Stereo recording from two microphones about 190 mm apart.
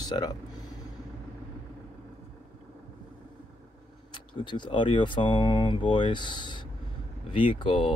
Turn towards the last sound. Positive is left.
turn(degrees=25)  # may be behind; listen again after turning